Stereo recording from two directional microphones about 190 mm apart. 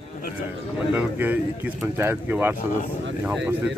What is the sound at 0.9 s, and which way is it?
Speech, 10° right (ahead or behind).